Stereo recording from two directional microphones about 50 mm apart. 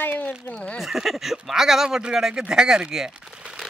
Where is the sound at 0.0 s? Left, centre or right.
Left.